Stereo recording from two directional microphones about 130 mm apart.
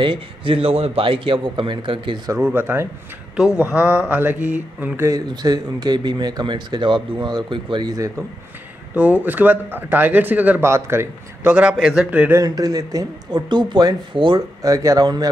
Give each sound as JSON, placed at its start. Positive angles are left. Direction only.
{"t": 0.0, "sound": "speech", "side_deg": -40}
{"t": 2.3, "sound": "speech", "side_deg": -15}
{"t": 8.9, "sound": "speech", "side_deg": -10}
{"t": 12.4, "sound": "speech", "side_deg": -30}